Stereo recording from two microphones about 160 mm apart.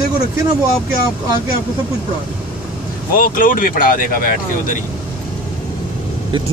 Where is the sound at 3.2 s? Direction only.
55° left (ahead or behind).